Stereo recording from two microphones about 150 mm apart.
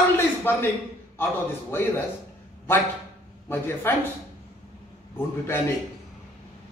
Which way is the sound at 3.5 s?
15° left (ahead or behind).